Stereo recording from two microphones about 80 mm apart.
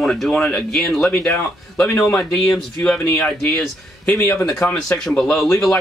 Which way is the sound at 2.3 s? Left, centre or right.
Centre.